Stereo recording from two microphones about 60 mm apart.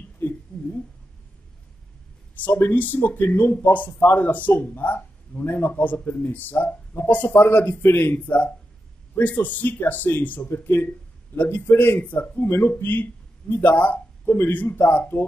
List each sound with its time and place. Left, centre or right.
0.2 s a sound: left
2.3 s speech: left
5.7 s speech: left
10.5 s speech: left
12.4 s speech: left
14.2 s a sound: left
14.5 s speech: left